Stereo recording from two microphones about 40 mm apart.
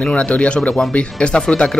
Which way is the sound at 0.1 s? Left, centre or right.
Left.